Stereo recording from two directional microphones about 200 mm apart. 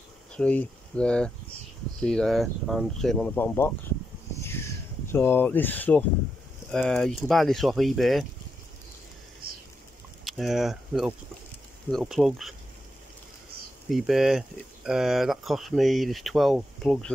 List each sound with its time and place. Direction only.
0.3 s speech: 5° left (ahead or behind)
4.4 s a sound: 10° left (ahead or behind)
6.7 s speech: centre (ahead or behind)
9.4 s a sound: 50° right (ahead or behind)
10.2 s speech: centre (ahead or behind)
13.8 s speech: centre (ahead or behind)